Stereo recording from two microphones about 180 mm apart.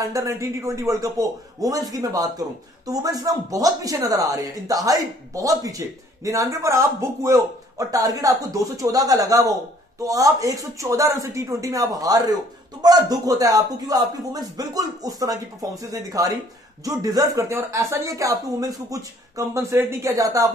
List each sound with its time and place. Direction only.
0.0 s speech: 15° right (ahead or behind)